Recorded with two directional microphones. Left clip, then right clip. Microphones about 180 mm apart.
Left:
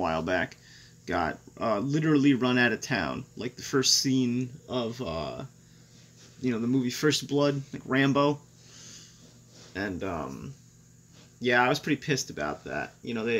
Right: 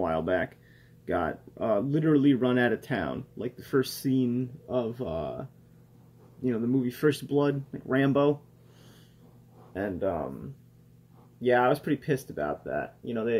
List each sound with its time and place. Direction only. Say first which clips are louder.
0.0 s speech: even; 25° left (ahead or behind)
9.8 s speech: right 3 dB; 25° left (ahead or behind)
11.4 s speech: even; 20° left (ahead or behind)